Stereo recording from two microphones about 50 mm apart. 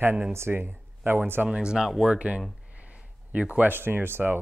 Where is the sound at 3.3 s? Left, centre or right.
Right.